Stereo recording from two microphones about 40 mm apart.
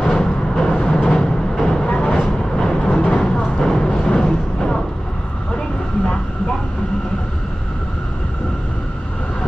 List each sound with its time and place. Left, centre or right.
0.0 s a sound: centre
0.7 s vehicle: left
2.3 s vehicle: centre
2.9 s vehicle: left
3.2 s music: centre